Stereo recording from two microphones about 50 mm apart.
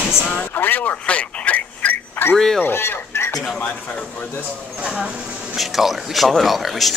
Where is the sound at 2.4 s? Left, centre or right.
Centre.